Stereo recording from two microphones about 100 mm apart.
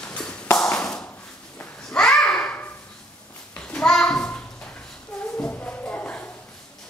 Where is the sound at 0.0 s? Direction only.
10° left (ahead or behind).